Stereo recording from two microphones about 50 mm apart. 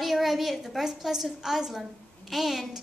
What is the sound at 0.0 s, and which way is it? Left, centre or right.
A woman's voice, centre.